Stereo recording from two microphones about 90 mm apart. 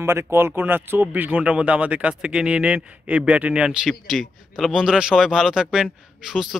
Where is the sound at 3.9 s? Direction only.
Centre (ahead or behind).